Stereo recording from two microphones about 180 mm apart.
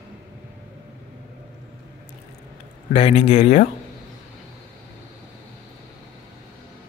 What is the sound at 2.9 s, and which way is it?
Speech, 35° left (ahead or behind).